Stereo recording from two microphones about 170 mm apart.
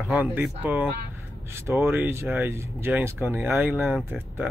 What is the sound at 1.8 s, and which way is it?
Speech, 15° right (ahead or behind).